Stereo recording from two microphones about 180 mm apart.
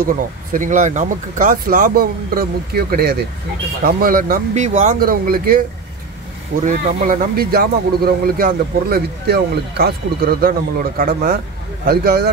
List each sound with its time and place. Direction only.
0.0 s speech: 50° right (ahead or behind)
6.6 s speech: 50° right (ahead or behind)